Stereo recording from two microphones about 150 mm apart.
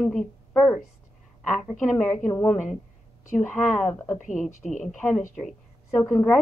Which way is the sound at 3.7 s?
50° left (ahead or behind).